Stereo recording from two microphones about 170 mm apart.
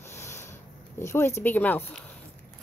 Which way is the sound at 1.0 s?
15° left (ahead or behind).